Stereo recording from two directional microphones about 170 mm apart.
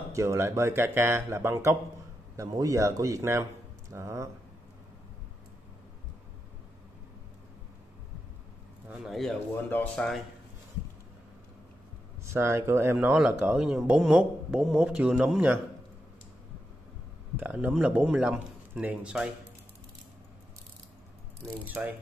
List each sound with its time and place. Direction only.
0.1 s speech: 20° right (ahead or behind)
8.8 s speech: centre (ahead or behind)
12.3 s speech: 15° right (ahead or behind)
17.4 s speech: 10° right (ahead or behind)
21.8 s speech: 10° right (ahead or behind)